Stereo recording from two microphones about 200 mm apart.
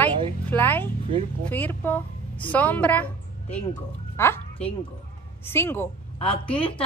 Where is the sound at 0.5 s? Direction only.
10° left (ahead or behind).